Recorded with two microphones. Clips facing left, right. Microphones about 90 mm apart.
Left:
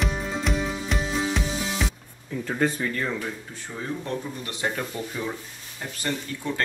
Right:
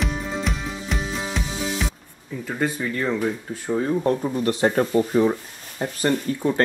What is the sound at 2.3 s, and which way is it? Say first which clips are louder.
Speech: even; 5° right (ahead or behind).